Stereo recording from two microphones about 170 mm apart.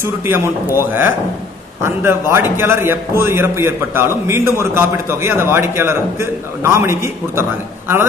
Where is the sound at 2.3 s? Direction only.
15° right (ahead or behind).